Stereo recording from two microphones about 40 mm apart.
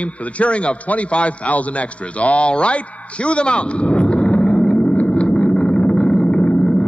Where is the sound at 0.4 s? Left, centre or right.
Left.